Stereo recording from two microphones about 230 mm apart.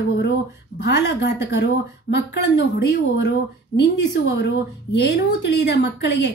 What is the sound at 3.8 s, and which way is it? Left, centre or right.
A woman's voice, left.